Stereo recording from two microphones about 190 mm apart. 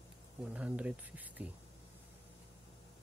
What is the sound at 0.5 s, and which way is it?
Speech, 5° right (ahead or behind).